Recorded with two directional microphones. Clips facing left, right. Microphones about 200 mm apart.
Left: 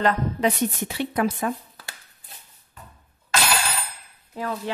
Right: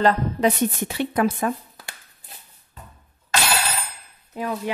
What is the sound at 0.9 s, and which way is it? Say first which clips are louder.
Speech: right 3 dB; 55° right (ahead or behind).